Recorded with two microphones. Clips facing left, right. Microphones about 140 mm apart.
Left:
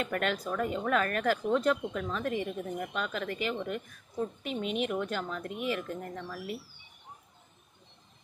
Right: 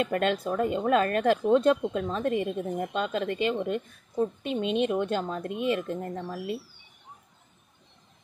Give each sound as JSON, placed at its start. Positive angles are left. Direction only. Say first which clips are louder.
{"t": 0.0, "sound": "speech", "louder": "right 5 dB", "side_deg": -25}